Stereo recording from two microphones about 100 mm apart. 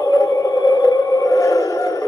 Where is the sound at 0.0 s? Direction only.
35° left (ahead or behind).